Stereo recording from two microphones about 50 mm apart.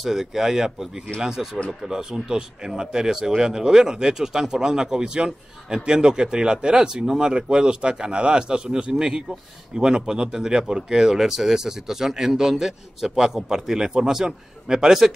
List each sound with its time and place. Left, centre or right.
0.0 s speech: centre